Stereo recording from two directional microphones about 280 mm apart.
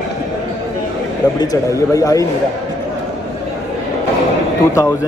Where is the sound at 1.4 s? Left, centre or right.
Centre.